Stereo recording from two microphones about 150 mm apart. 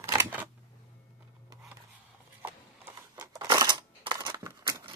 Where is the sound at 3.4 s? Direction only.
25° right (ahead or behind).